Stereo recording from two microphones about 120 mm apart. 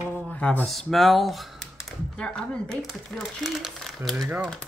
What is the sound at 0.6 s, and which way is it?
Speech, centre (ahead or behind).